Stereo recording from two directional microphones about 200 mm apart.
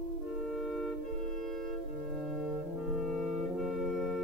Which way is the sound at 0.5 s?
Centre (ahead or behind).